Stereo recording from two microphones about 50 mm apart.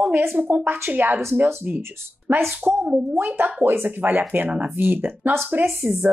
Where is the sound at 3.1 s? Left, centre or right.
Right.